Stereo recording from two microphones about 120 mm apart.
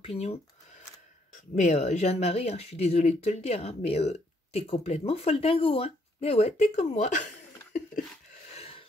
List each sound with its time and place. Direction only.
0.0 s speech: 60° left (ahead or behind)
1.3 s speech: 75° left (ahead or behind)
8.5 s a sound: 50° left (ahead or behind)